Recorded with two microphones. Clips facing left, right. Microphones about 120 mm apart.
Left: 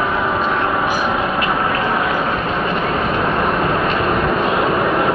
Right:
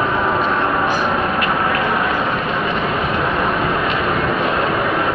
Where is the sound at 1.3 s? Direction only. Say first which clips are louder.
Even; 20° left (ahead or behind).